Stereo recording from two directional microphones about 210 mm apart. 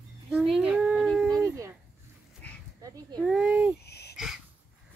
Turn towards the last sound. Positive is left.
turn(degrees=0)  # may be behind; listen again after turning